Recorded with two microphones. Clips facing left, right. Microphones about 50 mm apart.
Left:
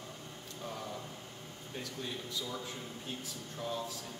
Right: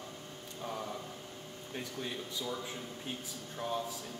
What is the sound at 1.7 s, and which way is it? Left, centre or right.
Speech, centre.